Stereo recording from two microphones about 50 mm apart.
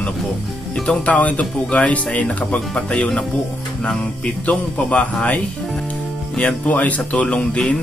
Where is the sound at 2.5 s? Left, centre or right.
Centre.